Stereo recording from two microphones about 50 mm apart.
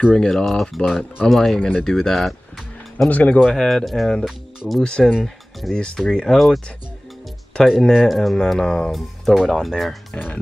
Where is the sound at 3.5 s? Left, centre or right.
Centre.